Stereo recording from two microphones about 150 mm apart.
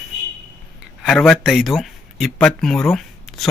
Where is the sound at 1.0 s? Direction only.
5° left (ahead or behind).